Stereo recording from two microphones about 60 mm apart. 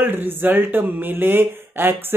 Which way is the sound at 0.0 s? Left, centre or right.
Right.